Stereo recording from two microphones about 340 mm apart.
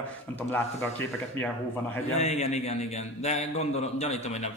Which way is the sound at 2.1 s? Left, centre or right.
Centre.